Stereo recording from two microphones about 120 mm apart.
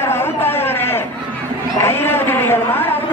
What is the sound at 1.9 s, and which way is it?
A woman's voice, 20° left (ahead or behind).